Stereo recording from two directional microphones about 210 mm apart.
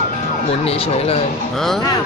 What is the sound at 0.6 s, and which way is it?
Speech, 30° left (ahead or behind).